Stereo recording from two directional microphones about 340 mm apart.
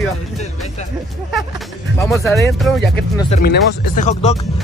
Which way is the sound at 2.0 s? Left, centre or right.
Centre.